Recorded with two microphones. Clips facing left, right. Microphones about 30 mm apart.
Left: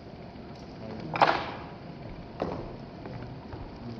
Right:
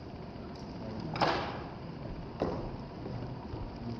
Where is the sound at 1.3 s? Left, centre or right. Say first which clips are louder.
Left 3 dB; centre.